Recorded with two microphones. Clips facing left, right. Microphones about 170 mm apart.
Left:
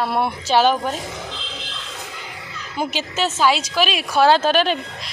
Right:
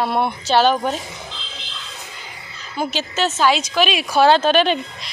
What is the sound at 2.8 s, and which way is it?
Speech, 10° left (ahead or behind).